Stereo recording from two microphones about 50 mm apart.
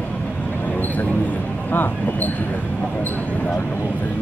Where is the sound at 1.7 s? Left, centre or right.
Left.